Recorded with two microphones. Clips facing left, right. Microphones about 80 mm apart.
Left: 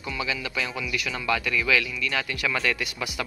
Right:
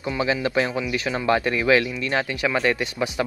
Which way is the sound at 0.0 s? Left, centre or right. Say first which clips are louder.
Right 7 dB; right.